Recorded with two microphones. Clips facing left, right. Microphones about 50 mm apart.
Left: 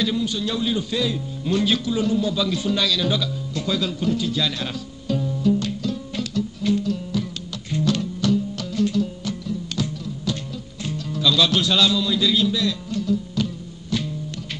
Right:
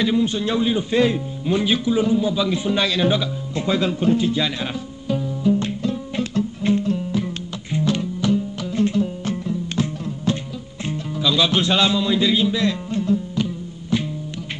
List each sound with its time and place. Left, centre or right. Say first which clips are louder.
0.0 s a man's voice: right 4 dB; right
5.6 s music: right 2 dB; right
11.1 s music: even; centre